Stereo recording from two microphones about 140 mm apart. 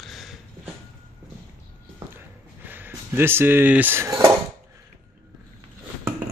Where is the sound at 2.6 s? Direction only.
15° right (ahead or behind).